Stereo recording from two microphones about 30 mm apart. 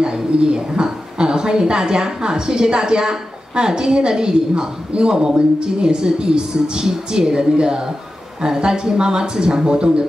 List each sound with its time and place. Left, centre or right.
0.0 s a woman's voice: right